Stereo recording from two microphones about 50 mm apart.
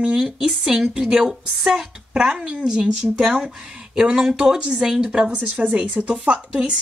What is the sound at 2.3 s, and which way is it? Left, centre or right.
Speech, right.